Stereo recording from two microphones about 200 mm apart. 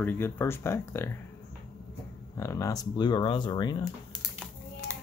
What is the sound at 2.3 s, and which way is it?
Speech, 15° left (ahead or behind).